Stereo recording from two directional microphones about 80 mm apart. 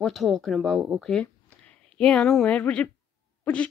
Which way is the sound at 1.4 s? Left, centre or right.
Centre.